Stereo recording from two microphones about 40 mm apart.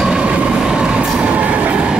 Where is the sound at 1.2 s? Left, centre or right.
Right.